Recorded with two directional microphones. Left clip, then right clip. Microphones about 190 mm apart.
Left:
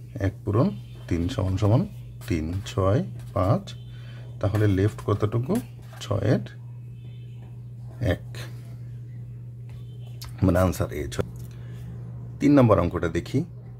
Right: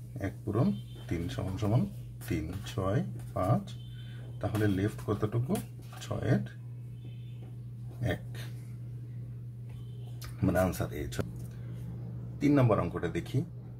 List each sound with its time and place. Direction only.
0.2 s speech: 45° left (ahead or behind)
8.0 s speech: 40° left (ahead or behind)
10.4 s speech: 45° left (ahead or behind)
12.4 s speech: 45° left (ahead or behind)